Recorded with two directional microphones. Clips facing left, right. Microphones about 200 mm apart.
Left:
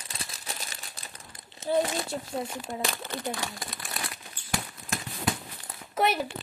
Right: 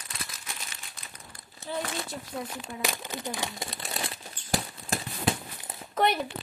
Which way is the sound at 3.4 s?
25° right (ahead or behind).